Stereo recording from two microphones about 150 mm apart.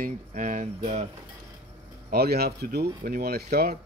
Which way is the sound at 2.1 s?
90° right.